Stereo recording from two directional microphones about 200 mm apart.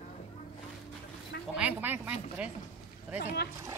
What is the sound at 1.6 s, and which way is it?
Speech, 10° right (ahead or behind).